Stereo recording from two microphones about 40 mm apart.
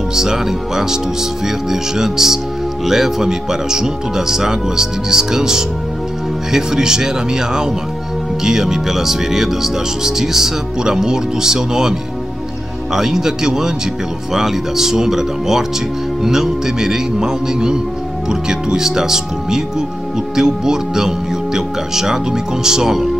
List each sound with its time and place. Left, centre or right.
0.1 s speech: centre